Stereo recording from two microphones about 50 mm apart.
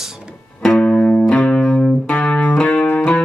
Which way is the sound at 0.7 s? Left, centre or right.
Centre.